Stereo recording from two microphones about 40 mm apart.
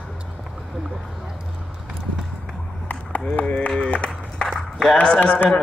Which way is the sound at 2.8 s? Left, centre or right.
Left.